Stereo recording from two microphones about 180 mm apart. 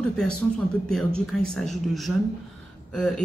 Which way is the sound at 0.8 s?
5° left (ahead or behind).